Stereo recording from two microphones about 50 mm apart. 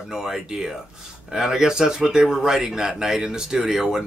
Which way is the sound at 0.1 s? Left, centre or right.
Centre.